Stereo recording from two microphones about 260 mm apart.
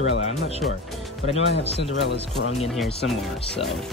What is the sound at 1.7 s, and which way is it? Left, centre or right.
Speech, right.